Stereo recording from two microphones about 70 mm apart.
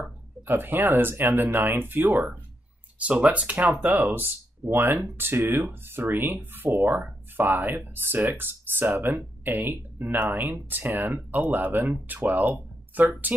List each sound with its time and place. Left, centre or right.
0.5 s speech: right